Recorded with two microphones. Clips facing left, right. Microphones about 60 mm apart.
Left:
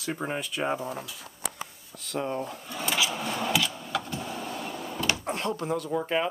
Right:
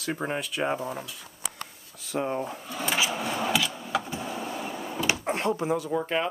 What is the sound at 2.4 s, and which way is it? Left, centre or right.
Speech, centre.